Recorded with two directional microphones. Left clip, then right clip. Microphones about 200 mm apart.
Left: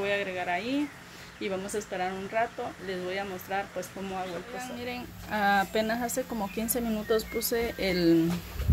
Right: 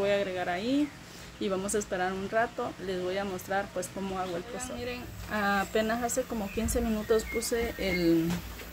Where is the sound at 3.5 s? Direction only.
20° right (ahead or behind).